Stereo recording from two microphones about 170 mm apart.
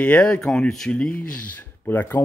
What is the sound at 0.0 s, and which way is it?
Speech, 10° left (ahead or behind).